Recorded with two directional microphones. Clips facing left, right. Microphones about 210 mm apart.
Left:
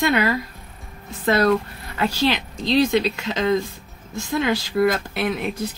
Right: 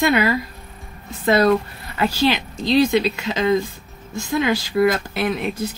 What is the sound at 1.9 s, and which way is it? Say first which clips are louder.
Speech: right 2 dB; 5° right (ahead or behind).